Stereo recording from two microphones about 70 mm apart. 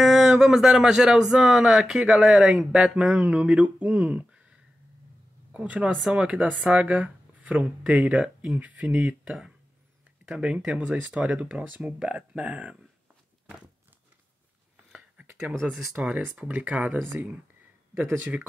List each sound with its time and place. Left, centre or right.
0.0 s speech: centre; by 12.7 s right
14.9 s whispering: centre
15.9 s speech: centre